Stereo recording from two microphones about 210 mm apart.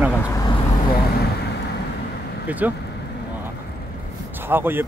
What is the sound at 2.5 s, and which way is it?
Speech, 10° right (ahead or behind).